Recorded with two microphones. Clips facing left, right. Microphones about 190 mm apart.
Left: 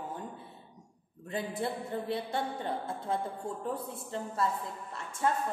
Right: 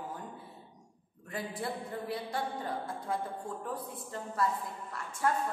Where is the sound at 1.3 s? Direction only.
25° left (ahead or behind).